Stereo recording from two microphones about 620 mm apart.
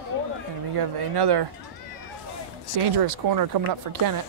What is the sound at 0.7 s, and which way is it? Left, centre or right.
Speech, right.